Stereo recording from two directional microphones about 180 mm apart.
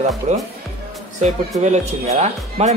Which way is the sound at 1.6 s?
40° right (ahead or behind).